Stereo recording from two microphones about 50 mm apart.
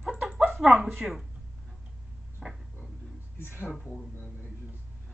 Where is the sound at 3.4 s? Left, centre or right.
Left.